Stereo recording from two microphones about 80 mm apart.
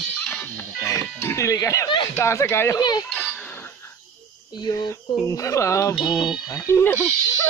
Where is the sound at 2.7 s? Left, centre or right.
Left.